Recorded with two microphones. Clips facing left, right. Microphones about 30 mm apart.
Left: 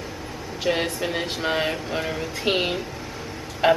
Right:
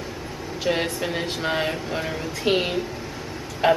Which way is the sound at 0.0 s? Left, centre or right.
Centre.